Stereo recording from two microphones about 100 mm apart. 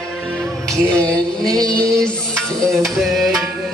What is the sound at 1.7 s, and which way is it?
Music, 10° left (ahead or behind).